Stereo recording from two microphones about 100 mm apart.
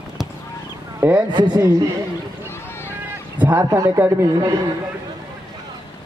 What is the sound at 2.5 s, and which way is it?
Run, 25° left (ahead or behind).